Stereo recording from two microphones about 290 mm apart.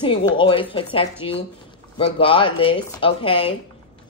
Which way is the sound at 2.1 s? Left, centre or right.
Centre.